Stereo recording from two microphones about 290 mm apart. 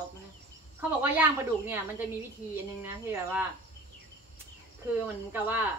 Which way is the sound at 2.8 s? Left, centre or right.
Centre.